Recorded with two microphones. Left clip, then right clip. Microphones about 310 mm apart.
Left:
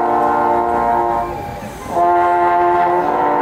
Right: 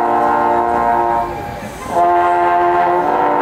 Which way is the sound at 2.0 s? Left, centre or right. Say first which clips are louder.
Even; centre.